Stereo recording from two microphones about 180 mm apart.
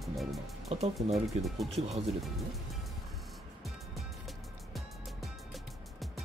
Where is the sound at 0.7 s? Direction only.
35° right (ahead or behind).